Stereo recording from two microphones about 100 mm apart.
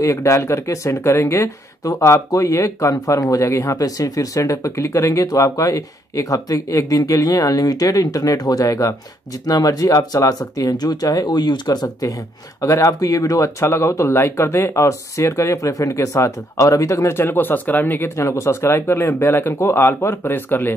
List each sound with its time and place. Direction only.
0.0 s speech: 30° left (ahead or behind)